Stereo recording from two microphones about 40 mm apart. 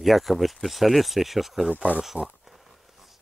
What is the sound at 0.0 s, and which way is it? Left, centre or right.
Speech, centre.